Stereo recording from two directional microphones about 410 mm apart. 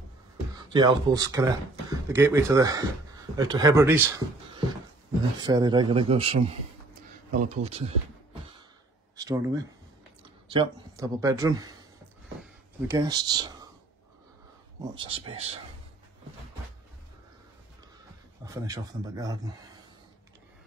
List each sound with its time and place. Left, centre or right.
0.6 s speech: centre
9.1 s speech: centre
12.8 s speech: centre
14.8 s speech: centre
18.4 s speech: centre